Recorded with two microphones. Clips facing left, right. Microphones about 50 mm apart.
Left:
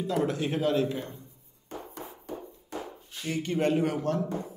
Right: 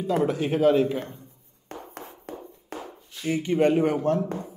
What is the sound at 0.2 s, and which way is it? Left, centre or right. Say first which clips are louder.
Speech: right 6 dB; right.